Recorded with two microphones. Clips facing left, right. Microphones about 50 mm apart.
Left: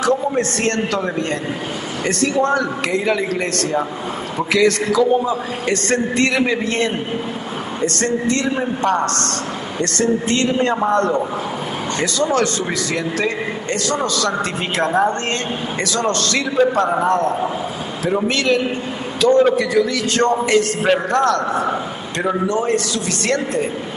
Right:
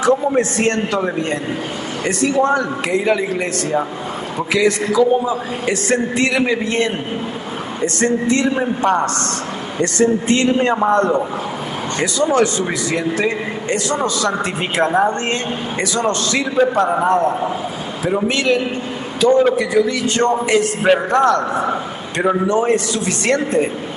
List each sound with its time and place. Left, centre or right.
0.0 s a man's voice: right
14.9 s a woman's voice: centre
15.8 s a man's voice: centre
19.2 s a man's voice: centre; by 23.6 s right